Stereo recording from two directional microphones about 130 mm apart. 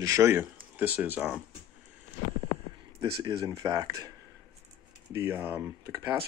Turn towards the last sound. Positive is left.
turn(degrees=-20)  # may be behind; listen again after turning